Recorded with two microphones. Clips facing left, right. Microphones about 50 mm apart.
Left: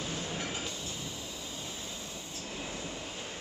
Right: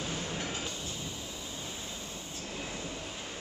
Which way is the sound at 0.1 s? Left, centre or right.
Centre.